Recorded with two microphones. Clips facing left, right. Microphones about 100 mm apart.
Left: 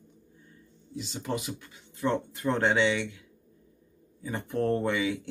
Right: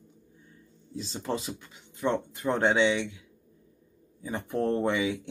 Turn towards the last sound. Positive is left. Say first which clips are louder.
# right 1 dB
turn(degrees=-20)  # may be behind; listen again after turning